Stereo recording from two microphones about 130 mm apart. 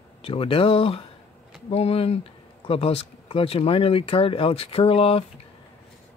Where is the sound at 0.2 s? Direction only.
45° left (ahead or behind).